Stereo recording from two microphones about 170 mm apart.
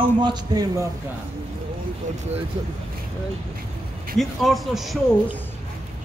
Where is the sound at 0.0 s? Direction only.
25° right (ahead or behind).